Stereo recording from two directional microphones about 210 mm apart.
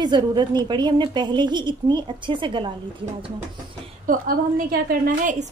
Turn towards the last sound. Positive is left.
turn(degrees=-40)  # may be behind; listen again after turning